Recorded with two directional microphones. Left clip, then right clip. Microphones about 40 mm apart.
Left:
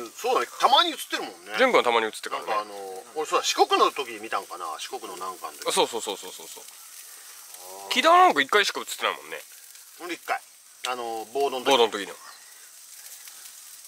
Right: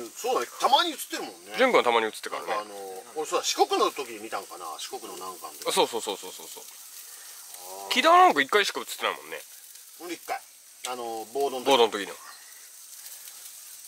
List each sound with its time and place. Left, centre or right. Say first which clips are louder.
0.0 s a sound: left 3 dB; left
0.6 s speech: left 3 dB; left
1.5 s speech: left 1 dB; centre
2.7 s bird: left 2 dB; centre
3.2 s speech: left 3 dB; left
5.6 s speech: even; centre
7.6 s speech: left 1 dB; centre
10.2 s frying: left 6 dB; left
11.1 s speech: even; left
11.7 s speech: right 1 dB; centre